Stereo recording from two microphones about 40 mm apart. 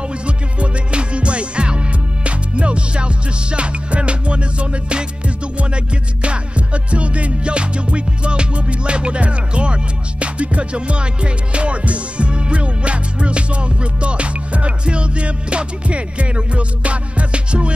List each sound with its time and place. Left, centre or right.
0.6 s music: right
6.2 s music: right